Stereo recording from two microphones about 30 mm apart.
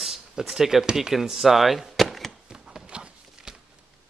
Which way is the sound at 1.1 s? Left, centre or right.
Centre.